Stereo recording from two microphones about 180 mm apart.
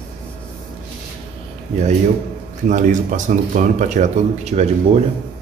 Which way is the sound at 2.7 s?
45° right (ahead or behind).